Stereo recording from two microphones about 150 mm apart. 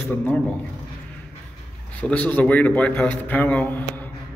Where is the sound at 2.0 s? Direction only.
10° left (ahead or behind).